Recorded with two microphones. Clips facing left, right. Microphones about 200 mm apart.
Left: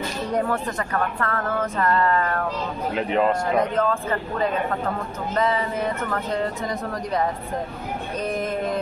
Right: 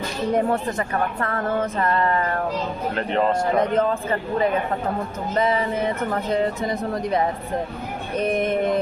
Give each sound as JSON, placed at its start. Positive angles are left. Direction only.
{"t": 0.4, "sound": "speech", "side_deg": -25}
{"t": 2.9, "sound": "speech", "side_deg": 5}
{"t": 3.7, "sound": "speech", "side_deg": -20}
{"t": 6.7, "sound": "speech", "side_deg": -25}